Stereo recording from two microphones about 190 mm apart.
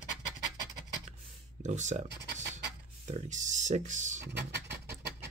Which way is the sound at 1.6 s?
40° right (ahead or behind).